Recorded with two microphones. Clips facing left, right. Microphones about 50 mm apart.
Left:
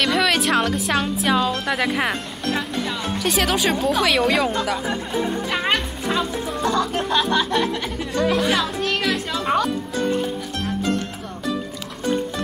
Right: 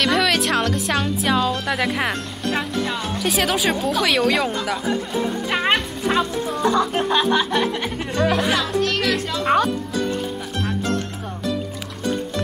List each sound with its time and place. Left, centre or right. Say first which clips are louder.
0.0 s a woman's voice: even; centre
5.5 s music: right 2 dB; centre
8.0 s music: right 1 dB; right
8.4 s speech: right 1 dB; centre
9.4 s speech: right 3 dB; right